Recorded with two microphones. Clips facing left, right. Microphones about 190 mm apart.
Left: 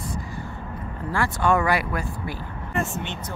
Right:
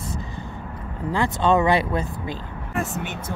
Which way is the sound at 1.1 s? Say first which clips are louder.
Right 2 dB; 20° right (ahead or behind).